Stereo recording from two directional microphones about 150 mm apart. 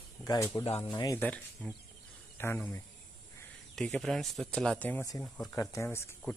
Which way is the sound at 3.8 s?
5° left (ahead or behind).